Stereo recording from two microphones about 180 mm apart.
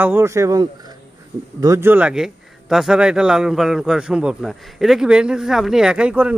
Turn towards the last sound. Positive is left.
turn(degrees=-5)  # may be behind; listen again after turning